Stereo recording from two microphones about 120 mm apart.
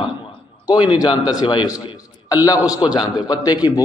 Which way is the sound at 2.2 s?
30° left (ahead or behind).